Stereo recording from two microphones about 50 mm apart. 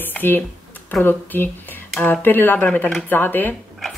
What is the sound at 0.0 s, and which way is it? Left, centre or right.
Speech, left.